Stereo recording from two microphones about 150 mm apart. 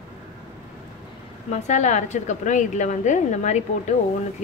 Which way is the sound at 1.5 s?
50° left (ahead or behind).